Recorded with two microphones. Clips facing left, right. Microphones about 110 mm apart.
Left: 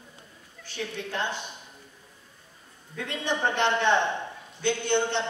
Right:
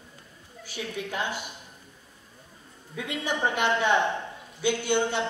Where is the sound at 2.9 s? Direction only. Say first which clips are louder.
Even; 10° right (ahead or behind).